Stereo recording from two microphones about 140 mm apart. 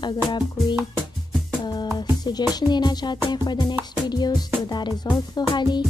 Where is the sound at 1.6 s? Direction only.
30° left (ahead or behind).